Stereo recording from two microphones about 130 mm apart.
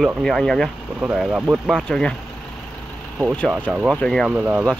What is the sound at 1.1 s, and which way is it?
Speech, 10° right (ahead or behind).